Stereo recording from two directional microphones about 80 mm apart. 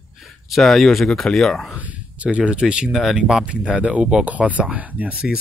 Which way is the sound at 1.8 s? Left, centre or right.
Centre.